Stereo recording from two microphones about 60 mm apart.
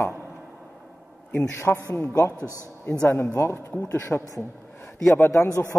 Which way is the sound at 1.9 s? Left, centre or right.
Left.